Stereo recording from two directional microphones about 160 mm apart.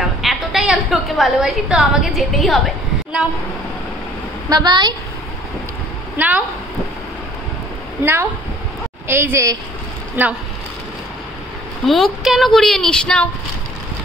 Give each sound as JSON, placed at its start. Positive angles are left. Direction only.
{"t": 0.2, "sound": "a woman's voice", "side_deg": 0}
{"t": 4.5, "sound": "a woman's voice", "side_deg": -25}
{"t": 6.1, "sound": "a woman's voice", "side_deg": -10}
{"t": 8.0, "sound": "a woman's voice", "side_deg": -15}
{"t": 11.8, "sound": "speech", "side_deg": 0}